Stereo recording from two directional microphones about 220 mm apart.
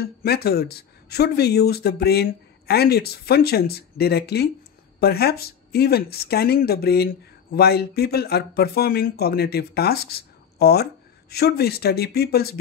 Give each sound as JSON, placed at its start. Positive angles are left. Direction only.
{"t": 0.0, "sound": "speech", "side_deg": 45}